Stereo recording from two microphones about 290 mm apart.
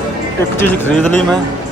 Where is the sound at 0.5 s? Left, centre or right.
Centre.